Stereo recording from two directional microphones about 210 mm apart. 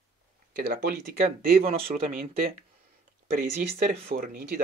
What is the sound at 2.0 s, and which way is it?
Speech, 45° right (ahead or behind).